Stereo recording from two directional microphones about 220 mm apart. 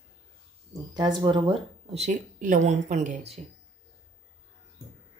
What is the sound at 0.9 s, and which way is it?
Speech, 20° right (ahead or behind).